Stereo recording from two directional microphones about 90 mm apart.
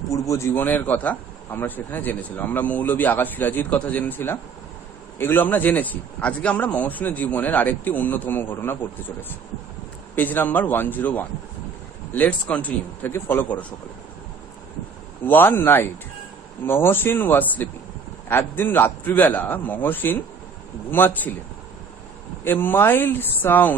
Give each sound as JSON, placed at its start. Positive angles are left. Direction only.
{"t": 0.1, "sound": "a man's voice", "side_deg": 35}
{"t": 0.6, "sound": "speech", "side_deg": 20}
{"t": 10.1, "sound": "speech", "side_deg": 20}
{"t": 15.2, "sound": "speech", "side_deg": 20}
{"t": 22.4, "sound": "speech", "side_deg": 25}